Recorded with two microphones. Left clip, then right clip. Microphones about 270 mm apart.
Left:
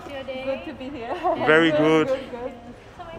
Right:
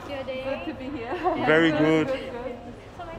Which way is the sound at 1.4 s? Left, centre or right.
Centre.